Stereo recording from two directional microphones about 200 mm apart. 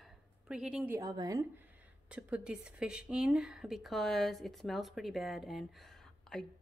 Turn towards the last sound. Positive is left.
turn(degrees=5)  # may be behind; listen again after turning